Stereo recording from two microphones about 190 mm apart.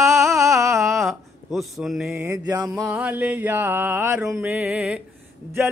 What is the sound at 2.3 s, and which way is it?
Mantra, 20° right (ahead or behind).